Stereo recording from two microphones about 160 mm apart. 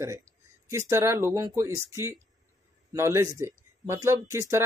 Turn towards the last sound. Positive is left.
turn(degrees=-15)  # may be behind; listen again after turning